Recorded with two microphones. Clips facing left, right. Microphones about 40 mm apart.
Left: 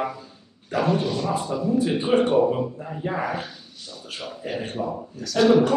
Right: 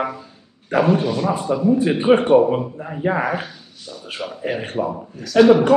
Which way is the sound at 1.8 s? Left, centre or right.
Right.